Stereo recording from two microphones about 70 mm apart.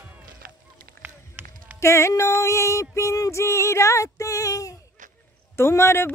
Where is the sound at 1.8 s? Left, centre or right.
Left.